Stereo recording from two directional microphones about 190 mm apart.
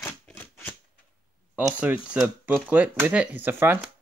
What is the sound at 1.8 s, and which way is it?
Speech, 10° right (ahead or behind).